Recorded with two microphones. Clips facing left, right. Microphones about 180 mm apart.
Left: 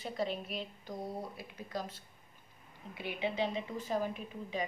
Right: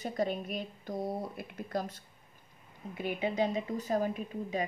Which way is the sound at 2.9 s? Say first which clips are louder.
Right 4 dB; 45° right (ahead or behind).